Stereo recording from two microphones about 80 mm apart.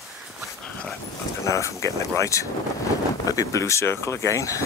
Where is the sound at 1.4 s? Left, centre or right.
Left.